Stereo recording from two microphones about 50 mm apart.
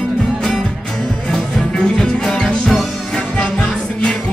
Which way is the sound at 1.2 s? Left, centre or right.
Centre.